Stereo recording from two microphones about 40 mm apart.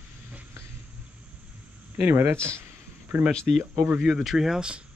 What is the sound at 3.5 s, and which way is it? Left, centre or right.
Speech, right.